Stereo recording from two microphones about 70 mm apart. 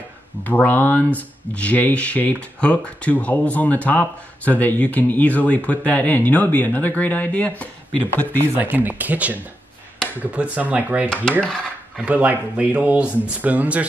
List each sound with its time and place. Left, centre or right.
0.4 s speech: left
8.5 s speech: right